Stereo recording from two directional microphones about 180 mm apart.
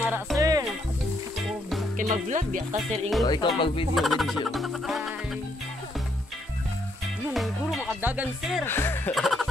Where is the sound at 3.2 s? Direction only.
25° left (ahead or behind).